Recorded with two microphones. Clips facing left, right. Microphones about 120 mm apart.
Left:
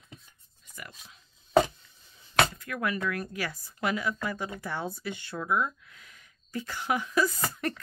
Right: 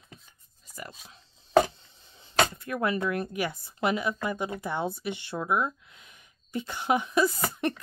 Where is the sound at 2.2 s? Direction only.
25° right (ahead or behind).